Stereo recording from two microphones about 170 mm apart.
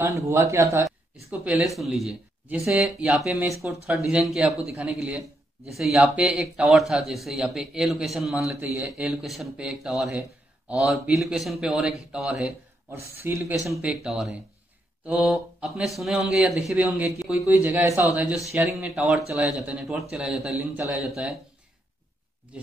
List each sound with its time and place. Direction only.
0.1 s a man's voice: 15° right (ahead or behind)
13.2 s a man's voice: 15° right (ahead or behind)
18.9 s a man's voice: centre (ahead or behind)